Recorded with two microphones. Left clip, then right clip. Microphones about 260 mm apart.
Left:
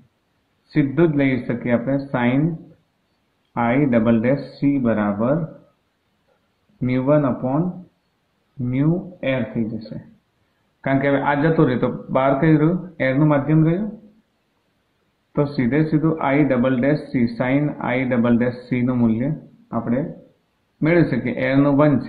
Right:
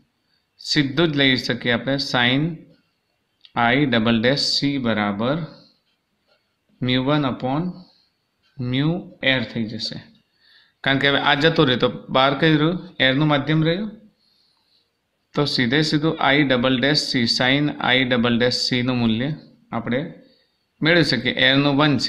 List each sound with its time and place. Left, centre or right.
0.7 s speech: right
3.5 s speech: right
6.8 s speech: right
8.6 s speech: right
10.8 s a man's voice: right
15.3 s speech: right